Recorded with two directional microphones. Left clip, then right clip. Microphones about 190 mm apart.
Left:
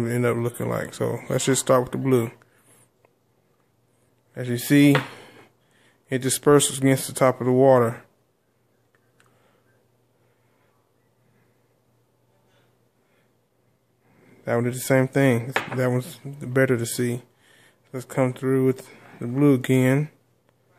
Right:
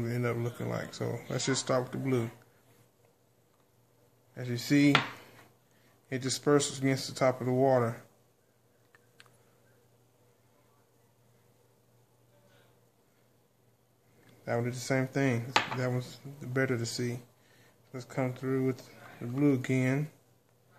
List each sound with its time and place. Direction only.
0.0 s speech: 65° left (ahead or behind)
4.3 s speech: 60° left (ahead or behind)
6.0 s speech: 65° left (ahead or behind)
14.4 s speech: 65° left (ahead or behind)